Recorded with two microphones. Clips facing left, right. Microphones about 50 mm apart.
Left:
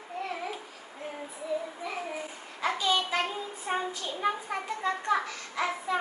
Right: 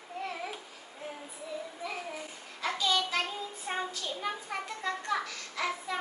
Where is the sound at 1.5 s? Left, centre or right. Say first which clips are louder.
Left 7 dB; centre.